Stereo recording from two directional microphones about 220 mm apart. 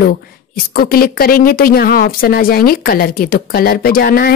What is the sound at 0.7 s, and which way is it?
A woman's voice, 45° left (ahead or behind).